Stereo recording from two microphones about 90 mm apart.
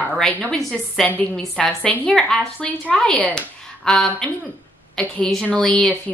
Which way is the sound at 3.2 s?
15° left (ahead or behind).